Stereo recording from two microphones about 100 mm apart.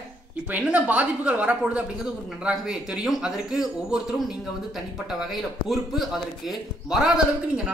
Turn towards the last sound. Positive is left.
turn(degrees=-10)  # may be behind; listen again after turning